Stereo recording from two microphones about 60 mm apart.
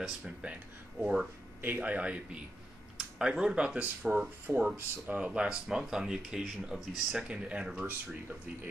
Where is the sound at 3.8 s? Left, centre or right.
Right; by 7.2 s centre.